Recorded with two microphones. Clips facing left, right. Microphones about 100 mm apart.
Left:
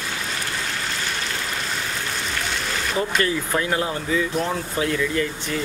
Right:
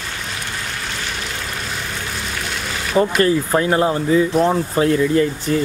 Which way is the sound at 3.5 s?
35° right (ahead or behind).